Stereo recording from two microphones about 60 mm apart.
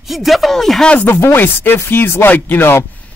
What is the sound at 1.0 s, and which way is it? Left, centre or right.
Speech, left.